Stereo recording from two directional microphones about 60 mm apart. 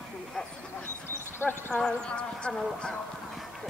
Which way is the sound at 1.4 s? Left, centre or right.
Left.